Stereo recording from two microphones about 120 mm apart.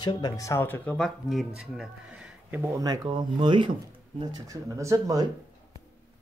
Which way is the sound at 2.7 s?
30° right (ahead or behind).